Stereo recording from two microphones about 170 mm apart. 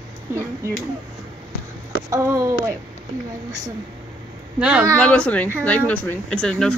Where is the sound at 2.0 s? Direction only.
15° right (ahead or behind).